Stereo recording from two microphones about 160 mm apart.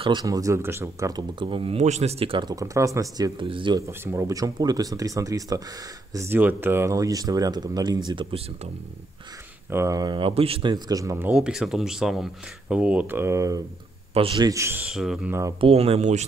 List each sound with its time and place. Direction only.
0.0 s speech: 25° right (ahead or behind)
3.8 s speech: 20° right (ahead or behind)
9.7 s speech: 20° right (ahead or behind)
11.3 s speech: 5° right (ahead or behind); by 13.6 s 20° right (ahead or behind)
14.1 s speech: 35° right (ahead or behind)
14.5 s speech: 15° right (ahead or behind)
14.9 s speech: 5° right (ahead or behind)
15.6 s speech: 40° right (ahead or behind)